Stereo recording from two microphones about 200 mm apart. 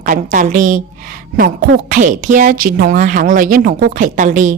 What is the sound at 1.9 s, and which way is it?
Speech, 40° right (ahead or behind).